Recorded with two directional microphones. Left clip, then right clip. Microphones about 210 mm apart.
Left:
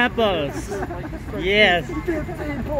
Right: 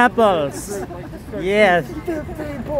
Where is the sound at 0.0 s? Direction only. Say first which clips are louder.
Right 5 dB; 25° right (ahead or behind).